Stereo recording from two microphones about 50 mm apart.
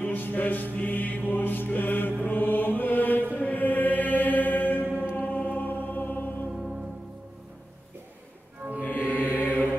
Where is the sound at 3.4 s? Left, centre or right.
Left.